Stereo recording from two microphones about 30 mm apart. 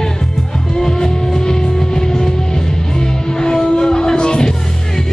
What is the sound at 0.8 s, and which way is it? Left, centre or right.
Music, left.